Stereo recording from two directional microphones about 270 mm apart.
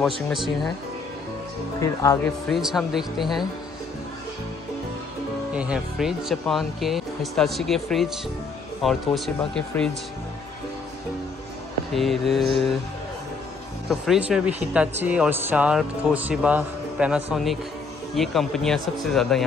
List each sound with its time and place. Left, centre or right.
0.3 s speech: centre
1.8 s speech: centre
5.5 s speech: centre
11.9 s speech: centre
13.8 s speech: centre